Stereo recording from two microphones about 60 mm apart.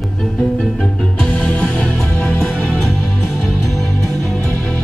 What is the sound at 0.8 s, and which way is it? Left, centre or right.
Music, centre.